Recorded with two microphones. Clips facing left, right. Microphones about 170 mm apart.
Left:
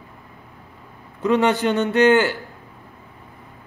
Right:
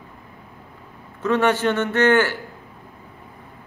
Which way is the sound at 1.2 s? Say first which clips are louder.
Left 1 dB; 15° left (ahead or behind).